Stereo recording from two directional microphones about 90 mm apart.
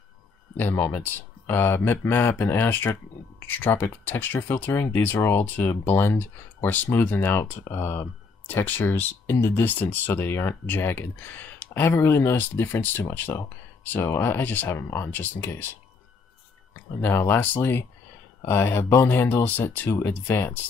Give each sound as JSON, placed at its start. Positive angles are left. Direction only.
{"t": 0.6, "sound": "speech", "side_deg": 25}
{"t": 8.5, "sound": "speech", "side_deg": 20}
{"t": 17.0, "sound": "speech", "side_deg": 25}